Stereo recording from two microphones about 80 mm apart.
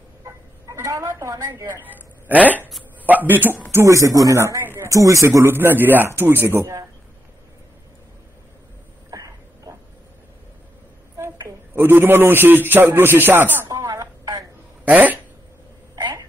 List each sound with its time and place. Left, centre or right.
0.7 s a woman's voice: right
1.4 s speech: right
3.7 s speech: right
5.4 s speech: right
9.1 s a sound: right
11.1 s a woman's voice: right
13.7 s telephone: right
14.9 s speech: centre